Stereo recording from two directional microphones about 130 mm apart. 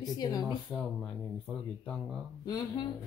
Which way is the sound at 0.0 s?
30° left (ahead or behind).